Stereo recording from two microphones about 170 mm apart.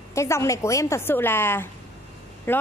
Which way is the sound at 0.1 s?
15° left (ahead or behind).